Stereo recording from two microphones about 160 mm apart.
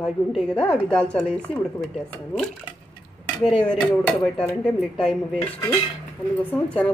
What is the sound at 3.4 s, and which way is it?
A woman's voice, 5° left (ahead or behind).